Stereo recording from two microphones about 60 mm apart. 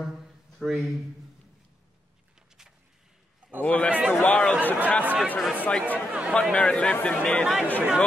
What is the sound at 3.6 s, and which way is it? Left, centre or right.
Speech, left.